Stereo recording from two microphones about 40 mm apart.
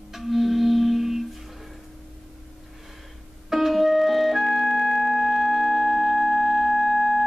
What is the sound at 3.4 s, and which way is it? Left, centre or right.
Music, centre.